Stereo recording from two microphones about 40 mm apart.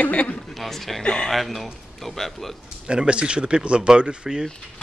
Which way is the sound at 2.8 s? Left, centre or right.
Right.